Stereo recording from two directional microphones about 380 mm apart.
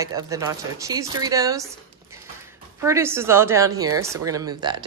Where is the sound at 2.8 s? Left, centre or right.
Centre.